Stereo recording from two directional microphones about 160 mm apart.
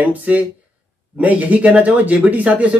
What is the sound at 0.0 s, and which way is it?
Speech, 10° right (ahead or behind).